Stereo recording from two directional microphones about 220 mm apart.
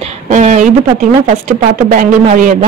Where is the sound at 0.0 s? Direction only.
35° right (ahead or behind).